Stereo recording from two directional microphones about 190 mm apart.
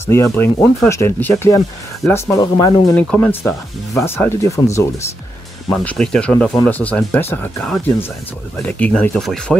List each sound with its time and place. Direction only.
0.0 s speech: 15° left (ahead or behind)
3.0 s speech: 10° left (ahead or behind)
5.7 s speech: 5° left (ahead or behind)